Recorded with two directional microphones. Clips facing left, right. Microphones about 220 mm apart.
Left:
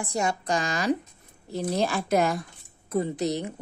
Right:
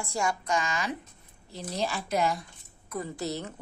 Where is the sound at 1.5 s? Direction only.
50° left (ahead or behind).